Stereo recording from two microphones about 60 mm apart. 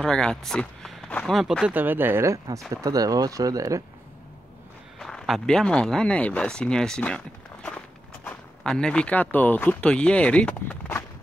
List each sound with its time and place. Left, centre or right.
0.0 s speech: centre
1.7 s speech: right
2.2 s speech: right
2.7 s speech: right
4.9 s speech: centre
7.0 s walk: centre
8.6 s speech: centre